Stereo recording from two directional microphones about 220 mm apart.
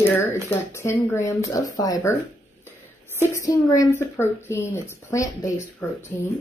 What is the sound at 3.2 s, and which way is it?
A woman's voice, 15° left (ahead or behind).